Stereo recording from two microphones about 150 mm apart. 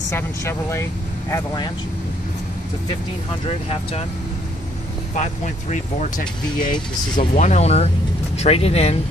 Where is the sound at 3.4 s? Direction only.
40° left (ahead or behind).